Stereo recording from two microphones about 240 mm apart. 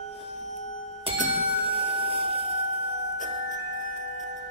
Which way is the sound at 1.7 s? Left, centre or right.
Right.